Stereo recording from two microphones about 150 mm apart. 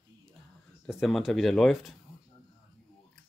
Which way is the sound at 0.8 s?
Centre (ahead or behind).